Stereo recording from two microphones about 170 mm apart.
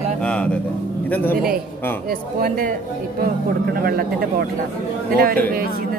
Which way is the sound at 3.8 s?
60° right (ahead or behind).